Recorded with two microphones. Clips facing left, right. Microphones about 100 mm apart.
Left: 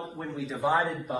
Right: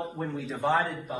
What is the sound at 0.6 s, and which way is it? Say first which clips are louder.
Speech: even; 15° left (ahead or behind).